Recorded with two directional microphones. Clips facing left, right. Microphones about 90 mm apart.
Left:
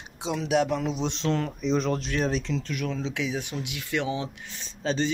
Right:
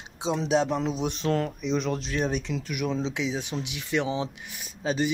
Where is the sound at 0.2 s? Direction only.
25° right (ahead or behind).